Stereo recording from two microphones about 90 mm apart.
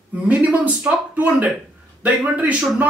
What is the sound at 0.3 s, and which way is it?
Speech, 15° right (ahead or behind).